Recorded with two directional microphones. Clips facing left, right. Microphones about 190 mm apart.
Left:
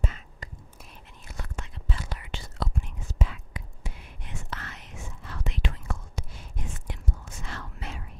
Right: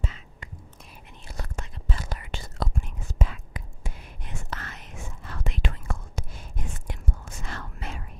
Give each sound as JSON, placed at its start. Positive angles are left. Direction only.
{"t": 1.2, "sound": "whispering", "side_deg": -35}